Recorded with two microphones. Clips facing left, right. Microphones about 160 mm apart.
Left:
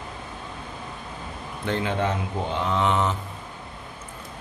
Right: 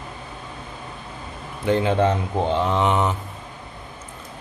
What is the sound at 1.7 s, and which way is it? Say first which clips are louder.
Mantra: right 6 dB; 10° right (ahead or behind).